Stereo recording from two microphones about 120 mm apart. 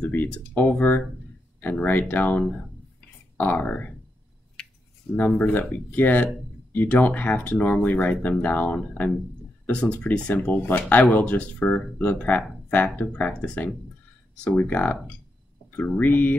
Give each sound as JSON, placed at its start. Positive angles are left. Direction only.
{"t": 0.1, "sound": "speech", "side_deg": 15}
{"t": 1.6, "sound": "speech", "side_deg": 15}
{"t": 5.1, "sound": "speech", "side_deg": 5}
{"t": 5.4, "sound": "speech", "side_deg": 15}
{"t": 7.6, "sound": "speech", "side_deg": 5}
{"t": 8.2, "sound": "speech", "side_deg": 15}